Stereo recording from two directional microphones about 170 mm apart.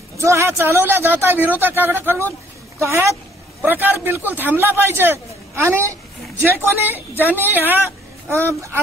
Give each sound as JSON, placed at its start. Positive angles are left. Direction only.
{"t": 0.2, "sound": "a man's voice", "side_deg": -15}